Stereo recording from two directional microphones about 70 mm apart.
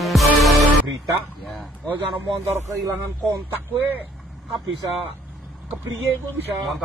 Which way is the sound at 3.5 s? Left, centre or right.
Right.